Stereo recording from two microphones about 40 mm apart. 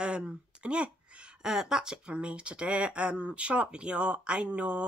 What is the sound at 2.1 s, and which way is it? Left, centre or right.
Speech, right.